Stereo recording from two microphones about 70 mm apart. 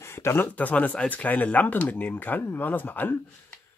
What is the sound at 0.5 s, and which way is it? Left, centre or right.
Speech, left.